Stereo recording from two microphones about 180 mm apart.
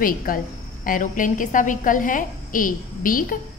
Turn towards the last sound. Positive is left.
turn(degrees=50)  # may be behind; listen again after turning